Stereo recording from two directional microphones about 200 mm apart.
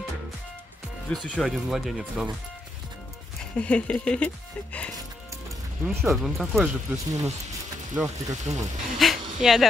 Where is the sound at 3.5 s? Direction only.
5° left (ahead or behind).